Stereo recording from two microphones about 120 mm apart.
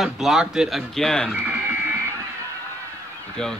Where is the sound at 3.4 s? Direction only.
5° left (ahead or behind).